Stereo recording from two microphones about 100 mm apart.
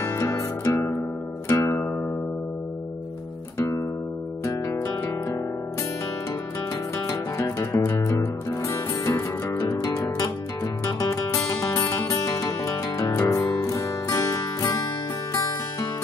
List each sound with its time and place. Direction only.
0.0 s music: 30° left (ahead or behind)
3.5 s music: 30° left (ahead or behind)
7.1 s music: 30° left (ahead or behind)